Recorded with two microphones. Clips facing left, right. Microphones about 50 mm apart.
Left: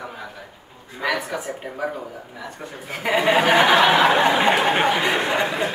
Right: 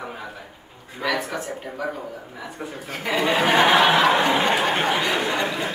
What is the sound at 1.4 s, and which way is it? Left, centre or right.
A man's voice, centre.